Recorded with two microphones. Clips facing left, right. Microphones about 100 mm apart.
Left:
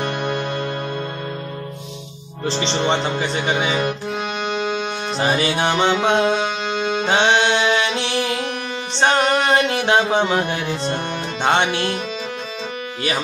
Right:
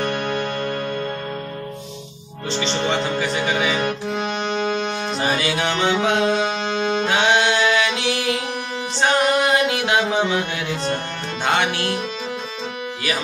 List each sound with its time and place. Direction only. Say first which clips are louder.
0.0 s music: even; 5° left (ahead or behind)
2.4 s speech: left 2 dB; 30° left (ahead or behind)
3.8 s accordion: even; 5° left (ahead or behind)
5.2 s speech: left 3 dB; 30° left (ahead or behind)
6.2 s music: even; centre (ahead or behind)
7.1 s music: left 3 dB; 25° left (ahead or behind)
11.4 s speech: left 3 dB; 25° left (ahead or behind)